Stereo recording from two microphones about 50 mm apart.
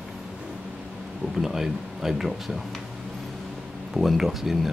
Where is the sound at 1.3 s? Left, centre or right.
Centre.